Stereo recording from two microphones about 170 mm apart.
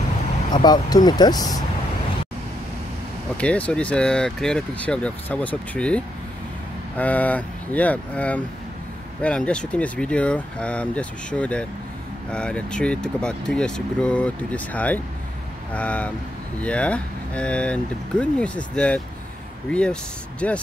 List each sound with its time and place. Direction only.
0.5 s speech: 25° left (ahead or behind)
3.3 s speech: 10° left (ahead or behind)